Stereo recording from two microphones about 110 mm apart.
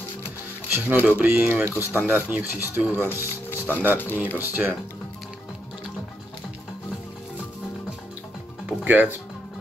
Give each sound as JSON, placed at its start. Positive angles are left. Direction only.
{"t": 0.7, "sound": "speech", "side_deg": -15}
{"t": 2.9, "sound": "speech", "side_deg": 20}
{"t": 4.4, "sound": "speech", "side_deg": -15}
{"t": 8.6, "sound": "speech", "side_deg": -15}